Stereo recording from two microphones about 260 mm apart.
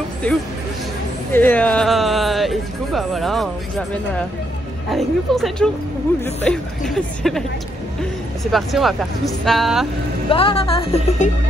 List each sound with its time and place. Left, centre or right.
0.2 s speech: centre
8.5 s speech: centre
10.3 s a woman's voice: left